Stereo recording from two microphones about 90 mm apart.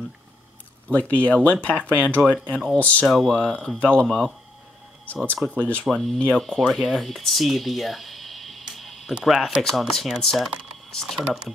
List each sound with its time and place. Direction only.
0.8 s speech: 15° left (ahead or behind)
3.1 s speech: centre (ahead or behind); by 5.9 s 15° left (ahead or behind)
5.9 s speech: 5° left (ahead or behind)
6.4 s speech: centre (ahead or behind)